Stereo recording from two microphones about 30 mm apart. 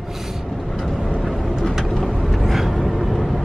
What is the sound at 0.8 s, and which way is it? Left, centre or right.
Vehicle, centre.